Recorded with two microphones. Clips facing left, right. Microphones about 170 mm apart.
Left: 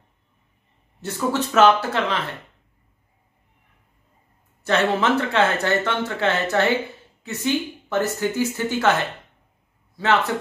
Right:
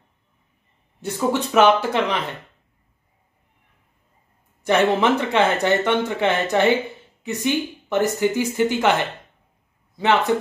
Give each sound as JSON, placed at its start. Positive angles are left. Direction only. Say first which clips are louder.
{"t": 1.0, "sound": "speech", "louder": "right 2 dB", "side_deg": -15}
{"t": 4.6, "sound": "speech", "louder": "right 2 dB", "side_deg": -15}
{"t": 9.9, "sound": "speech", "louder": "right 2 dB", "side_deg": -20}